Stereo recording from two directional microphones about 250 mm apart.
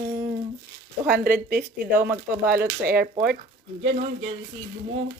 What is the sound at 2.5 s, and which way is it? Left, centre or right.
Speech, right.